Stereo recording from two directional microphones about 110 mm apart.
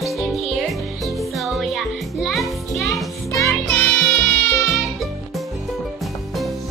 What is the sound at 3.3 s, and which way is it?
Music, 30° left (ahead or behind).